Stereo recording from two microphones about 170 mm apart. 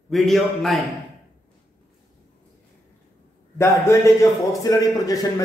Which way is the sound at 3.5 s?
15° left (ahead or behind).